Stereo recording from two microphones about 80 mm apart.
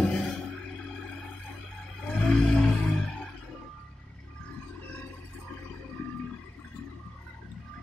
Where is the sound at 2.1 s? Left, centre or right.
Centre.